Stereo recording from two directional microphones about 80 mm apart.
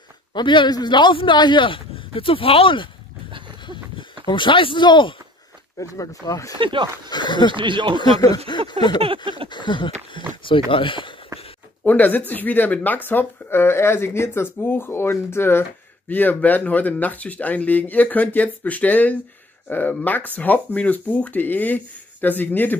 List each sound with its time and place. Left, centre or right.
0.3 s a man's voice: left
3.3 s a sound: right
4.3 s a sound: left
5.8 s speech: left
6.6 s speech: right
7.1 s a man's voice: left
7.5 s speech: right
8.0 s speech: left
9.3 s a sound: left
10.7 s speech: left
11.8 s speech: left